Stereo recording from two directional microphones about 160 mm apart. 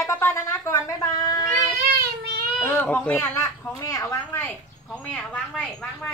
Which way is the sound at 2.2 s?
70° right (ahead or behind).